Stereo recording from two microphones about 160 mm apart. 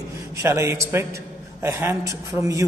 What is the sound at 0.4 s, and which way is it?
Speech, 15° right (ahead or behind).